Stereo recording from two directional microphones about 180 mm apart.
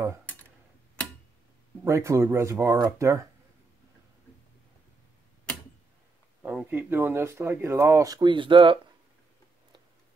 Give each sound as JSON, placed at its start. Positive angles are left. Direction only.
{"t": 1.9, "sound": "speech", "side_deg": -15}
{"t": 6.4, "sound": "speech", "side_deg": -10}